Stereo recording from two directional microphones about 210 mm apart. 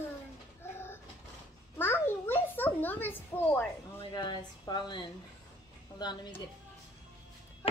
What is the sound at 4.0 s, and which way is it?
Speech, 20° left (ahead or behind).